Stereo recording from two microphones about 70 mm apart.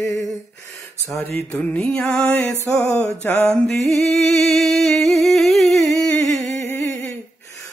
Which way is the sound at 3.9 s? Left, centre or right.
Centre.